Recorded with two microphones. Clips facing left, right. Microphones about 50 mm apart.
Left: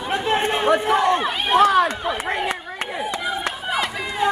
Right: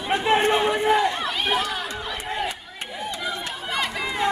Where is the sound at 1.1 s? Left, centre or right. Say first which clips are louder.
Left 4 dB; centre.